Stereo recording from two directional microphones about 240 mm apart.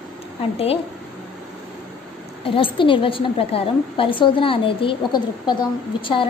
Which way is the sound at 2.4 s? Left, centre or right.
Left.